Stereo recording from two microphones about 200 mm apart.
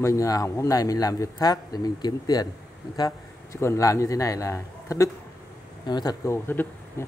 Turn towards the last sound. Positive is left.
turn(degrees=10)  # may be behind; listen again after turning